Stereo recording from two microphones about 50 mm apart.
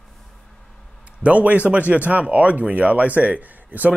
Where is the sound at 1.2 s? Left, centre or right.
Right.